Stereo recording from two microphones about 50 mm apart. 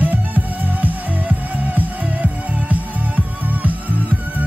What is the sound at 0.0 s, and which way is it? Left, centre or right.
Music, right.